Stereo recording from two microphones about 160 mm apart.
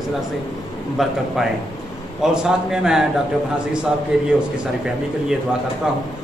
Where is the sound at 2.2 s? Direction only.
5° right (ahead or behind).